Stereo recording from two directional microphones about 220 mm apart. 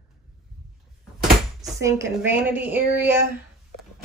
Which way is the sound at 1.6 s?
15° right (ahead or behind).